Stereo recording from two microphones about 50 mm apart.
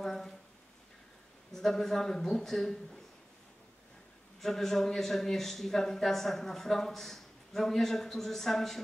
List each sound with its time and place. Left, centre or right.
0.0 s a sound: centre
1.5 s speech: centre
4.4 s speech: centre